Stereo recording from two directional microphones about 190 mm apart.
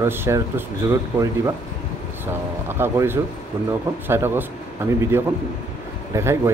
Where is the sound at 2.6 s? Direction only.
10° right (ahead or behind).